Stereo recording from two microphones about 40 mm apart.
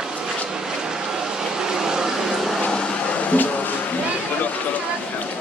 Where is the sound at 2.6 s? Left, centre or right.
Left.